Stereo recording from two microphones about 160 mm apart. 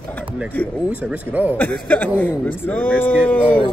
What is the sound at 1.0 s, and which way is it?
Speech, 10° right (ahead or behind).